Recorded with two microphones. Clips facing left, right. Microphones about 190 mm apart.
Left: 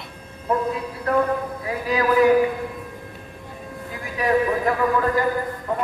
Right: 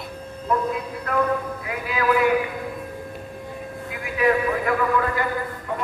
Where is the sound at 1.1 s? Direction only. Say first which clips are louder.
Left 2 dB; 35° left (ahead or behind).